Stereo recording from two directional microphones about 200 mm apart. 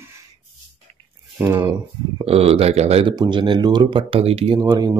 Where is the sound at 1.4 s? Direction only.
10° right (ahead or behind).